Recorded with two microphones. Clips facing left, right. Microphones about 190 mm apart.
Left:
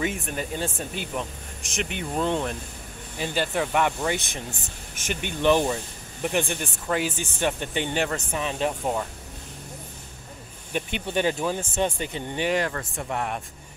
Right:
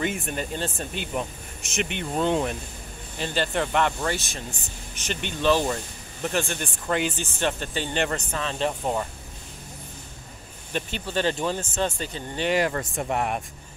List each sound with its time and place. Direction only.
0.0 s speech: centre (ahead or behind)
3.2 s speech: 10° left (ahead or behind)
6.6 s speech: 5° left (ahead or behind)
10.7 s speech: 15° left (ahead or behind)
12.4 s speech: 5° right (ahead or behind)